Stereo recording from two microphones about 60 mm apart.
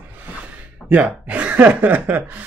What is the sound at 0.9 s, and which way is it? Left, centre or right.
Speech, right.